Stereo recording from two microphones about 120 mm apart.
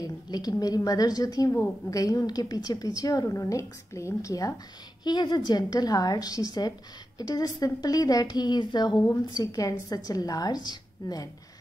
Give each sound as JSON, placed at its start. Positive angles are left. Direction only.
{"t": 0.0, "sound": "a woman's voice", "side_deg": 30}